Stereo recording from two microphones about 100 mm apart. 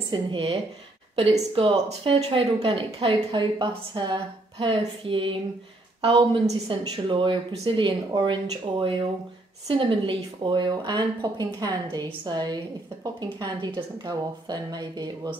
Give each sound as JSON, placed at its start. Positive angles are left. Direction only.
{"t": 0.1, "sound": "speech", "side_deg": -55}
{"t": 3.3, "sound": "speech", "side_deg": -55}